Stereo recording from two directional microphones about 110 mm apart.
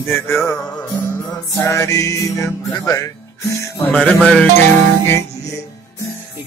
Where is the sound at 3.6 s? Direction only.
20° left (ahead or behind).